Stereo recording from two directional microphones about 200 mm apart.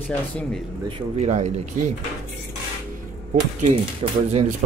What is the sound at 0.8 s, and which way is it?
Speech, 30° right (ahead or behind).